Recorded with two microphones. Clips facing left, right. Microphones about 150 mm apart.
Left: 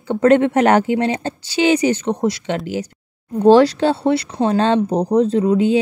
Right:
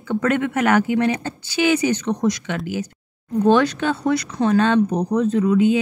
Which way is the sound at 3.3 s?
30° left (ahead or behind).